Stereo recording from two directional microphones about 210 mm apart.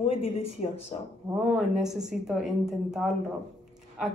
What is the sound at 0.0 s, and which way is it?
Speech, 25° left (ahead or behind).